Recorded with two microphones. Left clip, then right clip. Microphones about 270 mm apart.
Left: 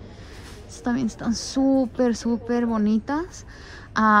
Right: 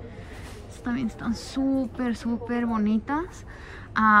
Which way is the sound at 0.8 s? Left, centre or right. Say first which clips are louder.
Left 4 dB; centre.